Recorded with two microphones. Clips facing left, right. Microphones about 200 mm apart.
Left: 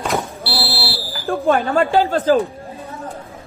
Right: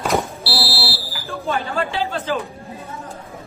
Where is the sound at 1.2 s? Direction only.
55° left (ahead or behind).